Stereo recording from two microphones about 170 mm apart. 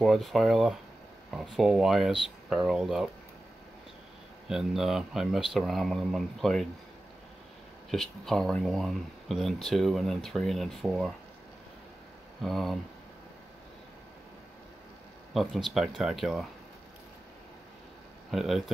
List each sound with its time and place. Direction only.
0.0 s speech: centre (ahead or behind)
4.5 s speech: centre (ahead or behind)
7.9 s speech: centre (ahead or behind)
12.4 s speech: centre (ahead or behind)
15.3 s speech: centre (ahead or behind)
18.3 s speech: centre (ahead or behind)